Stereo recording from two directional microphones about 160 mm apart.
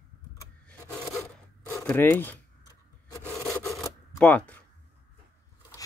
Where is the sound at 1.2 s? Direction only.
15° left (ahead or behind).